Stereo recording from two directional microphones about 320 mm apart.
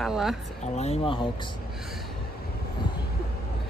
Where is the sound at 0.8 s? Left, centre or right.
Centre.